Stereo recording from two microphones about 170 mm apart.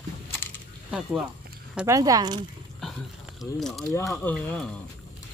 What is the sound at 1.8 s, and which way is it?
Speech, 20° right (ahead or behind).